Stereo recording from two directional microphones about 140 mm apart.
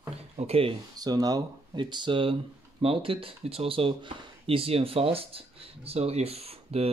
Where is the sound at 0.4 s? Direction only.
45° right (ahead or behind).